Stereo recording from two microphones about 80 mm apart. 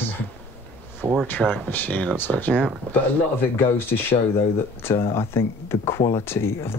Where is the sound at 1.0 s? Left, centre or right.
Right.